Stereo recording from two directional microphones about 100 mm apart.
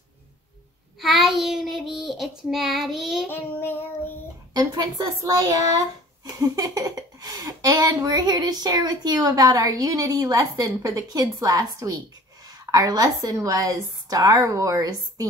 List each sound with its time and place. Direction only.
1.0 s child singing: centre (ahead or behind)
3.3 s child singing: 20° left (ahead or behind)
4.6 s speech: 45° right (ahead or behind)